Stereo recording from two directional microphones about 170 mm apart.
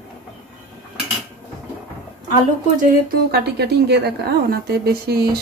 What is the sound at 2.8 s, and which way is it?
A woman's voice, 55° right (ahead or behind).